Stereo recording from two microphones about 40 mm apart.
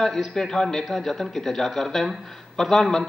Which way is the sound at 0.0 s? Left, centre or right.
Centre.